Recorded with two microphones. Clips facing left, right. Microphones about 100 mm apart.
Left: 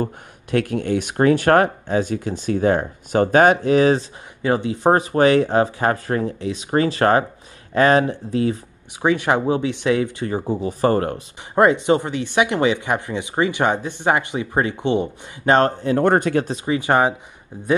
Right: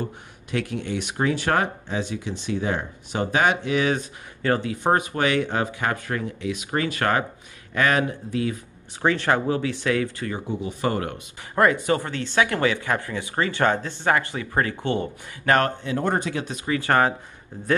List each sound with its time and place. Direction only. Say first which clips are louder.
0.0 s speech: left 6 dB; 50° left (ahead or behind)
4.4 s speech: left 3 dB; 20° left (ahead or behind)
4.8 s speech: left 7 dB; 35° left (ahead or behind)
9.0 s speech: left 3 dB; 15° left (ahead or behind)
10.4 s speech: left 7 dB; 35° left (ahead or behind)
11.5 s speech: left 5 dB; 20° left (ahead or behind)
16.0 s speech: left 8 dB; 55° left (ahead or behind)
16.6 s speech: left 1 dB; 20° left (ahead or behind)